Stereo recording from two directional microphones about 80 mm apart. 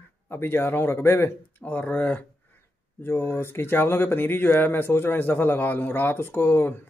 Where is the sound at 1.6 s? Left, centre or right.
Left.